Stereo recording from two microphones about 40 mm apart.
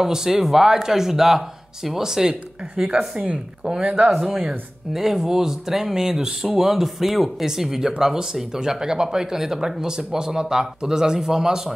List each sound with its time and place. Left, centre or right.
0.0 s speech: centre
4.1 s speech: centre